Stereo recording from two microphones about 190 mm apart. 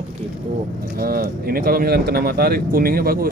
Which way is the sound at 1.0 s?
50° right (ahead or behind).